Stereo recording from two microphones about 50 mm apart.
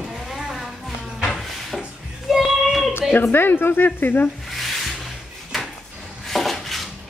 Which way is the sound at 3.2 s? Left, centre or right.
Left.